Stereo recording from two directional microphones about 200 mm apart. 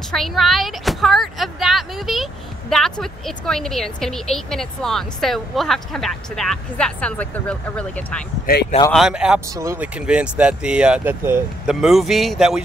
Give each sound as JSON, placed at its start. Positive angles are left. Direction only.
{"t": 0.1, "sound": "speech", "side_deg": 0}
{"t": 8.5, "sound": "speech", "side_deg": 50}
{"t": 8.9, "sound": "speech", "side_deg": -5}
{"t": 9.5, "sound": "speech", "side_deg": -15}